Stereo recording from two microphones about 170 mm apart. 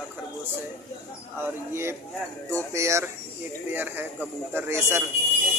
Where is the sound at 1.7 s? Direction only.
15° right (ahead or behind).